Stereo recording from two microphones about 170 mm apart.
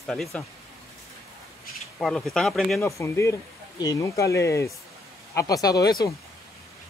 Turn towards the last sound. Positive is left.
turn(degrees=20)  # may be behind; listen again after turning